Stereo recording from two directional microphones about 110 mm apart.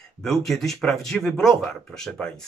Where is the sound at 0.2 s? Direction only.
5° left (ahead or behind).